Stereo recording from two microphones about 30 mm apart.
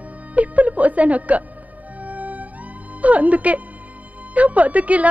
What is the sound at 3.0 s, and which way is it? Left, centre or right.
A woman's voice, right.